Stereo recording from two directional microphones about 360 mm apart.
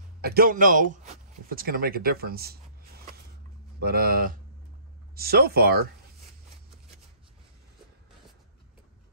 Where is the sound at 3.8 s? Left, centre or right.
Right.